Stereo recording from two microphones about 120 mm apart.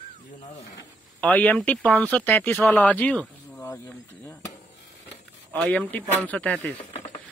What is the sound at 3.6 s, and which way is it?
Speech, 25° left (ahead or behind).